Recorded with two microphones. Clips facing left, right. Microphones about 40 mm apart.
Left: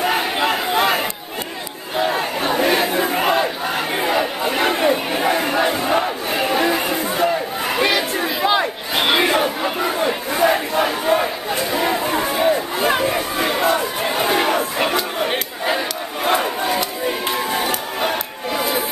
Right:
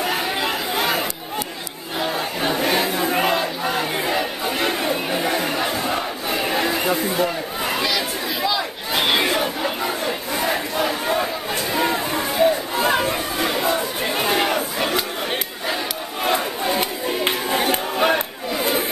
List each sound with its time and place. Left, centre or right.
0.0 s a sound: left
0.7 s chatter: left
2.0 s crowd: centre
6.4 s chatter: centre
8.9 s crowd: centre
10.0 s battle cry: centre
11.7 s chatter: centre
12.3 s a sound: centre
13.7 s chatter: centre
16.3 s crowd: left
17.9 s crowd: centre